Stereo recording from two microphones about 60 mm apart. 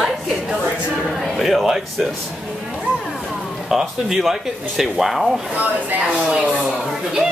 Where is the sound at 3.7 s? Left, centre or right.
Centre.